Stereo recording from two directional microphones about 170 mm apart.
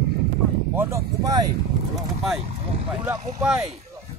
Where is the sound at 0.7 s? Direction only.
20° right (ahead or behind).